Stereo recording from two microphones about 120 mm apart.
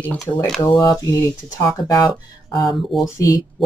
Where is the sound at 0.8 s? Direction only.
30° left (ahead or behind).